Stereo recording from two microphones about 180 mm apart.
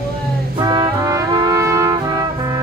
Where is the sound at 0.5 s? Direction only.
25° right (ahead or behind).